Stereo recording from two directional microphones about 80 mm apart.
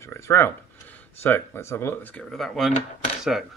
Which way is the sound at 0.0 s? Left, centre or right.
Left.